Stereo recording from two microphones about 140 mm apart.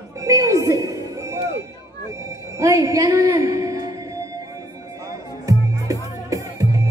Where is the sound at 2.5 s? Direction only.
25° right (ahead or behind).